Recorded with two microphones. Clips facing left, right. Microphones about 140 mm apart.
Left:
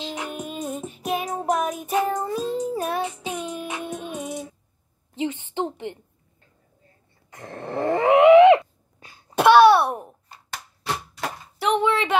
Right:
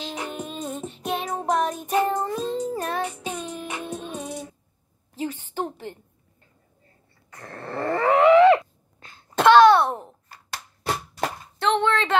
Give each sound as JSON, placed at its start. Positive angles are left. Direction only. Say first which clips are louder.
{"t": 0.0, "sound": "music", "louder": "left 1 dB", "side_deg": 0}
{"t": 5.1, "sound": "a woman's voice", "louder": "left 3 dB", "side_deg": 20}
{"t": 7.2, "sound": "a sound", "louder": "left 3 dB", "side_deg": 20}
{"t": 11.5, "sound": "speech", "louder": "left 1 dB", "side_deg": 5}